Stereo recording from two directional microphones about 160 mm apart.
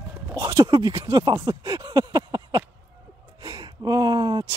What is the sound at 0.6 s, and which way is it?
Speech, 25° right (ahead or behind).